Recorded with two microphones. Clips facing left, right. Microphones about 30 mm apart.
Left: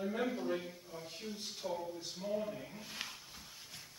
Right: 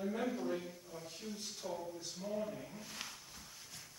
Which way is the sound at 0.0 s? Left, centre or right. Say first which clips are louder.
Left 1 dB; centre.